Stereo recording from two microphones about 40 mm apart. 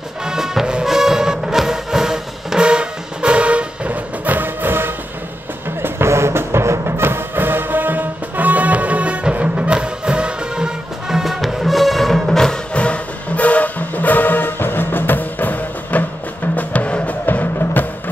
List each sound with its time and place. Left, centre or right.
0.2 s music: centre
2.6 s music: right
4.3 s music: right
5.8 s music: right; by 12.5 s centre
12.7 s music: left
16.5 s music: left
17.3 s music: left